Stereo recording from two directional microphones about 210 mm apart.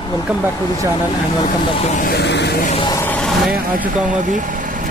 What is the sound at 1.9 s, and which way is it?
Vehicle, 45° left (ahead or behind).